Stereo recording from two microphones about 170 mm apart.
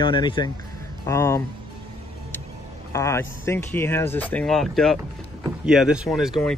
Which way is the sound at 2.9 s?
15° left (ahead or behind).